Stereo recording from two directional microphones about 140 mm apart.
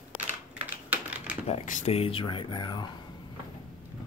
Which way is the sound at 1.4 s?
60° left (ahead or behind).